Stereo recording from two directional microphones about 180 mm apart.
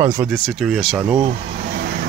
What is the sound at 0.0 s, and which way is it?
Speech, 15° right (ahead or behind).